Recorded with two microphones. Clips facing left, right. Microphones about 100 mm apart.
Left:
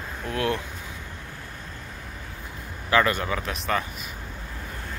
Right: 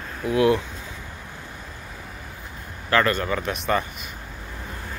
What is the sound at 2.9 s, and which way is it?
Speech, 5° left (ahead or behind).